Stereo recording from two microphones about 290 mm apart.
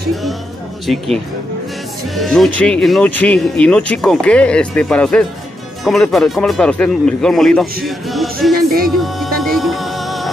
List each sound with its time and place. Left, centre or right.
0.8 s speech: centre
8.5 s music: right
9.0 s music: centre